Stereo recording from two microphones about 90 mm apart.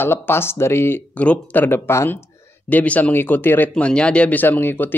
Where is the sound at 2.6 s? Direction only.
15° left (ahead or behind).